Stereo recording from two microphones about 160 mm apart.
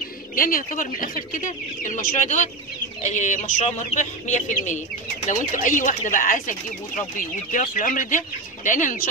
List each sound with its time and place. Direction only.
0.4 s speech: 60° left (ahead or behind)